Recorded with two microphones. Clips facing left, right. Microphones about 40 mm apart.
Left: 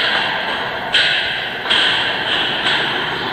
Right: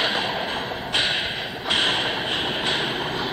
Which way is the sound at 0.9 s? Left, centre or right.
Left.